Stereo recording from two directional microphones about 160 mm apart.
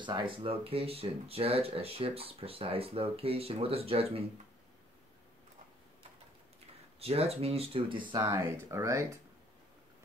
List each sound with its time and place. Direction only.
0.0 s speech: 30° right (ahead or behind)
7.0 s speech: 40° right (ahead or behind)
8.2 s speech: 15° right (ahead or behind)